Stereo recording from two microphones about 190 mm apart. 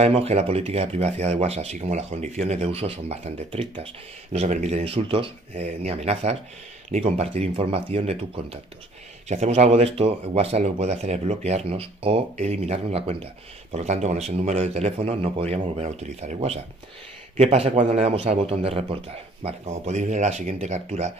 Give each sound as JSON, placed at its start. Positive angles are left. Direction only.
{"t": 0.0, "sound": "speech", "side_deg": -35}